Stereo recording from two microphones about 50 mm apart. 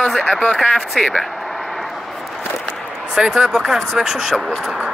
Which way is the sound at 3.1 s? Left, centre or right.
Centre.